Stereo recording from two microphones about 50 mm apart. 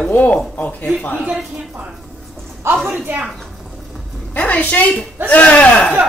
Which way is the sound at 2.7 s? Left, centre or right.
Right.